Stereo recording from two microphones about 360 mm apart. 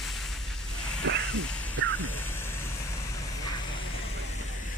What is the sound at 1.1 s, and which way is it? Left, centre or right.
Hiss, right.